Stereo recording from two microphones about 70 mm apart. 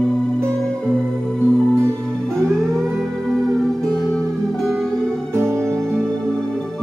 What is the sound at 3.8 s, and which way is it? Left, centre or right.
Music, centre.